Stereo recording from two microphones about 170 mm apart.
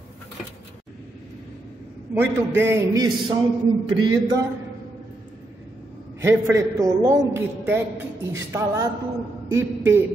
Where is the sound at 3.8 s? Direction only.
20° right (ahead or behind).